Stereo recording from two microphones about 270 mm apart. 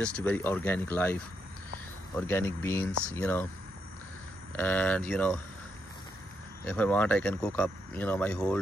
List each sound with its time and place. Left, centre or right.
0.0 s speech: centre
4.6 s speech: centre
6.6 s speech: centre